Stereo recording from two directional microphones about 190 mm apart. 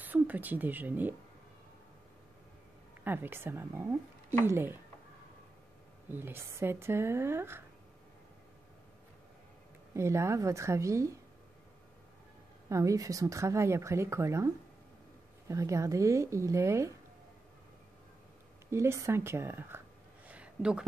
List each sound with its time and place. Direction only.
0.0 s speech: 10° right (ahead or behind)
3.0 s speech: 10° right (ahead or behind)
6.0 s speech: 10° right (ahead or behind)
9.9 s speech: 15° right (ahead or behind)
12.6 s speech: 15° right (ahead or behind)
18.7 s speech: 15° right (ahead or behind)
20.2 s a sound: 5° right (ahead or behind)